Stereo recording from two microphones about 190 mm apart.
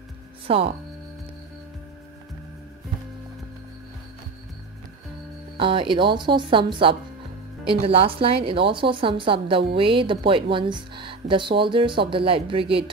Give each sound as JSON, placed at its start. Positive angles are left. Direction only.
{"t": 0.5, "sound": "speech", "side_deg": -30}
{"t": 5.6, "sound": "speech", "side_deg": -25}